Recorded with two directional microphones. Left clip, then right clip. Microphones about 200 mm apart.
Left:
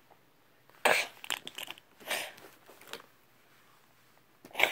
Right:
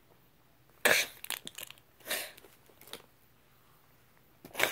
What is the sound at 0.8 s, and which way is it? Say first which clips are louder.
Cough: even; 25° right (ahead or behind).